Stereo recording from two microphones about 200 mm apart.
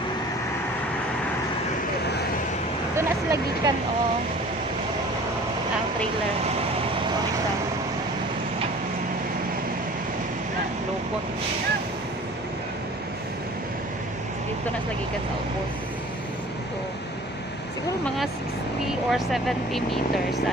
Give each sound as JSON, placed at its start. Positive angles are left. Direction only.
{"t": 3.0, "sound": "vehicle", "side_deg": -15}
{"t": 18.0, "sound": "speech", "side_deg": 0}